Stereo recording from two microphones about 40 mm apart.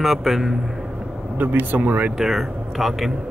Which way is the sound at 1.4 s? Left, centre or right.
Right.